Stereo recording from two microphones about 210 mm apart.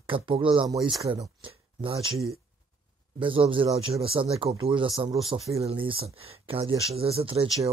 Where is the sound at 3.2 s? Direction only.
25° right (ahead or behind).